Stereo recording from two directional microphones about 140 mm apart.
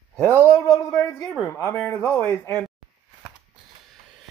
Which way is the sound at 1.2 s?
Centre (ahead or behind).